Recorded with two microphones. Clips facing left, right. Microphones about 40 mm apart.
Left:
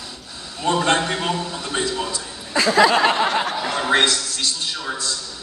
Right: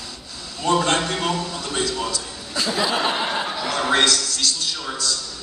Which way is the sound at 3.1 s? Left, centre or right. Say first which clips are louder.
Left 4 dB; left.